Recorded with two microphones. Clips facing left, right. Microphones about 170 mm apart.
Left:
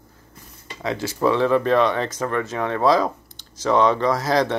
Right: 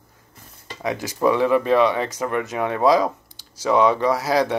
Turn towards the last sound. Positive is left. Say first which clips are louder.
# even
turn(degrees=-10)  # may be behind; listen again after turning